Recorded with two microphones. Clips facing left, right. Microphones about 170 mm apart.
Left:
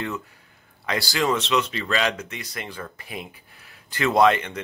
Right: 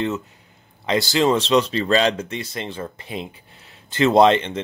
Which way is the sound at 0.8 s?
20° right (ahead or behind).